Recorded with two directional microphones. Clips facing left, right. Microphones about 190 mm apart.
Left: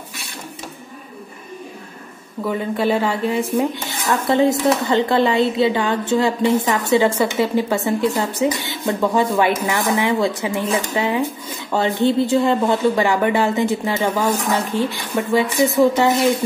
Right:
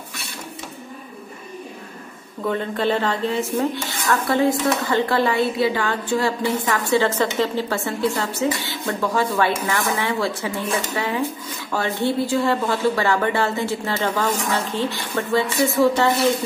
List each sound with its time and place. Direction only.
2.4 s speech: 10° left (ahead or behind)